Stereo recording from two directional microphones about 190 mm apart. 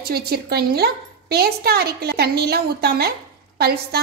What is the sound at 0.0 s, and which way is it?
A woman's voice, 55° right (ahead or behind).